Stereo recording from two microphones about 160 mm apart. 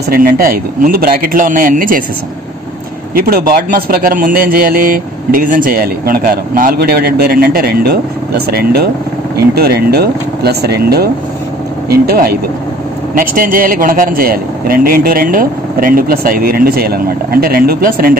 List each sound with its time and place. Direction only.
0.1 s a man's voice: 65° right (ahead or behind)
3.3 s a man's voice: 70° right (ahead or behind)
13.1 s a man's voice: 60° right (ahead or behind)